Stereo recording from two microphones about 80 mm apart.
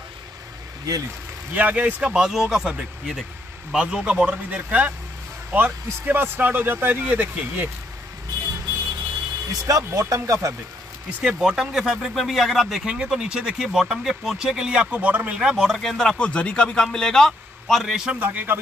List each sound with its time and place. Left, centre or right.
1.5 s speech: centre
2.1 s speech: centre
3.7 s speech: centre
9.5 s speech: right
11.2 s speech: centre
18.2 s speech: right